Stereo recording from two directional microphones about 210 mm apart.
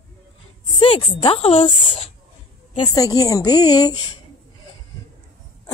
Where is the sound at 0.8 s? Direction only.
25° left (ahead or behind).